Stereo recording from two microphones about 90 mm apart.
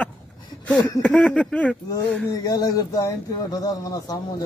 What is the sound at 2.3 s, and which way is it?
Speech, 40° left (ahead or behind).